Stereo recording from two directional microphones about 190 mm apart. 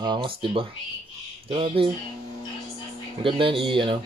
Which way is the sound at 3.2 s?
25° right (ahead or behind).